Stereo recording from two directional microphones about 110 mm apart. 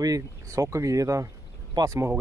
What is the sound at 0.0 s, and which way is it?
Speech, 30° right (ahead or behind).